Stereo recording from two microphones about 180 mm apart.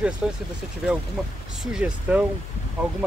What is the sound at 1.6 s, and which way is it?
Speech, 5° right (ahead or behind).